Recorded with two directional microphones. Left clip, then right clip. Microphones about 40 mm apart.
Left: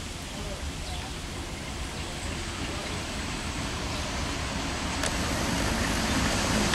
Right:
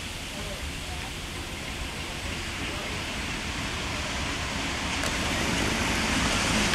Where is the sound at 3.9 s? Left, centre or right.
Right.